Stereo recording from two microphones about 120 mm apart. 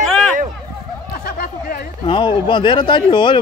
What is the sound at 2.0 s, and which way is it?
Speech, 45° left (ahead or behind).